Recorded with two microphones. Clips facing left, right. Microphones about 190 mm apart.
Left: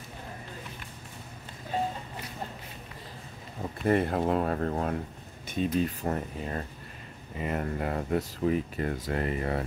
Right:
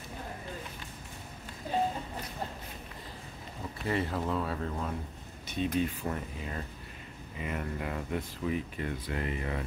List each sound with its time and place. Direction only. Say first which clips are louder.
3.8 s speech: left 7 dB; 50° left (ahead or behind)